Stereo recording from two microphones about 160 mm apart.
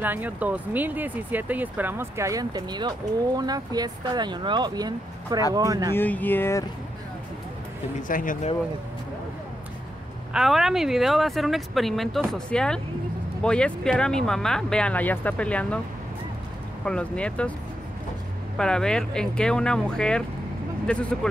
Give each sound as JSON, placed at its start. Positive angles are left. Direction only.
{"t": 0.0, "sound": "speech", "side_deg": -10}
{"t": 5.9, "sound": "speech", "side_deg": 10}
{"t": 8.1, "sound": "speech", "side_deg": 60}
{"t": 10.3, "sound": "speech", "side_deg": 0}
{"t": 16.8, "sound": "speech", "side_deg": 5}
{"t": 18.6, "sound": "speech", "side_deg": 5}